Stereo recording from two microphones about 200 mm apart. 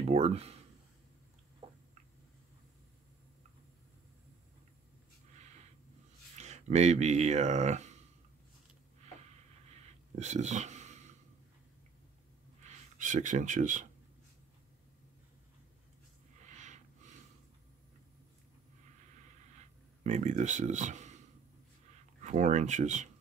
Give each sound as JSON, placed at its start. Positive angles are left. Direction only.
{"t": 0.0, "sound": "speech", "side_deg": -30}
{"t": 6.3, "sound": "speech", "side_deg": -35}
{"t": 9.7, "sound": "a sound", "side_deg": -35}
{"t": 12.6, "sound": "speech", "side_deg": -40}
{"t": 16.4, "sound": "snort", "side_deg": -35}
{"t": 20.0, "sound": "speech", "side_deg": -35}
{"t": 22.2, "sound": "speech", "side_deg": -35}